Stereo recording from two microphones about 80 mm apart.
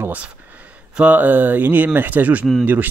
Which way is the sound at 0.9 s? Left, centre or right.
Centre.